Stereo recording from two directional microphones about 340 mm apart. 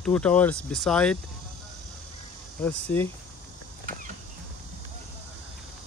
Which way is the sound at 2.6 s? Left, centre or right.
Centre.